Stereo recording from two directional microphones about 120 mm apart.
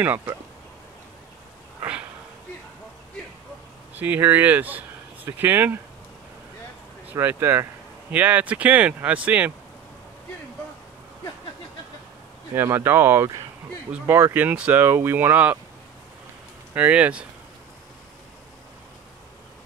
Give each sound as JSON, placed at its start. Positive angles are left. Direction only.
{"t": 0.0, "sound": "speech", "side_deg": -15}
{"t": 3.9, "sound": "speech", "side_deg": -15}
{"t": 7.2, "sound": "speech", "side_deg": -20}
{"t": 12.5, "sound": "speech", "side_deg": -20}
{"t": 16.7, "sound": "speech", "side_deg": -10}